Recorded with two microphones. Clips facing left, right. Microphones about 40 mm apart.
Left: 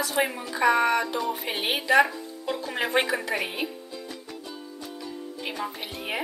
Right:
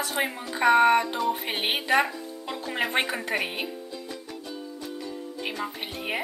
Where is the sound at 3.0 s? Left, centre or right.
Right.